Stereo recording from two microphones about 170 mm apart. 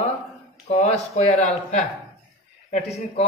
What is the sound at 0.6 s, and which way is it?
A man's voice, 40° left (ahead or behind).